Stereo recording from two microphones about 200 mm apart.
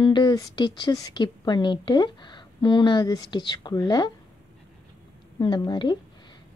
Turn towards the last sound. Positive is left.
turn(degrees=20)  # may be behind; listen again after turning